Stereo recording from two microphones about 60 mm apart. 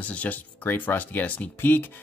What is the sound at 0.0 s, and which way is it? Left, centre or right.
Speech, left.